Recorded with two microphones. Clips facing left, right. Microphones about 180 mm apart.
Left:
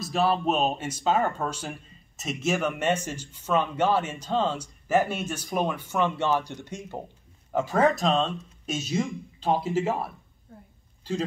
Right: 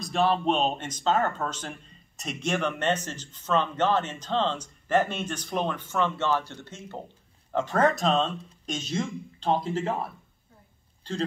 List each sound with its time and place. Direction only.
0.0 s speech: 5° left (ahead or behind)